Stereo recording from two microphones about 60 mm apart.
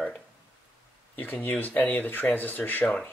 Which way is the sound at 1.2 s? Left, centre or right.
Left.